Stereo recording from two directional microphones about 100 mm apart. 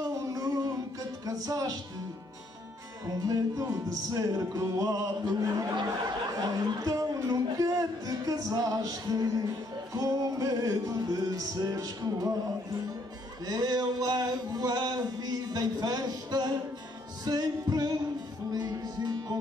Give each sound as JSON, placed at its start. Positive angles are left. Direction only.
{"t": 0.0, "sound": "music", "side_deg": -40}
{"t": 3.1, "sound": "music", "side_deg": -40}
{"t": 13.5, "sound": "a sound", "side_deg": -45}
{"t": 17.2, "sound": "music", "side_deg": -40}